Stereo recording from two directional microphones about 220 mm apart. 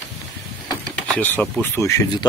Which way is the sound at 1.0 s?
5° left (ahead or behind).